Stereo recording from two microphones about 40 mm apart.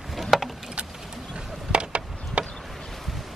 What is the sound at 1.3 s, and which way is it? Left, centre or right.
Chop, right.